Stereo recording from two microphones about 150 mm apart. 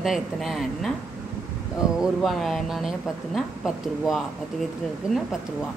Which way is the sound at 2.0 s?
Centre (ahead or behind).